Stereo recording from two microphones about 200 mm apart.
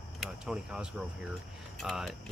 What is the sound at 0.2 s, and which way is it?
Speech, 5° right (ahead or behind).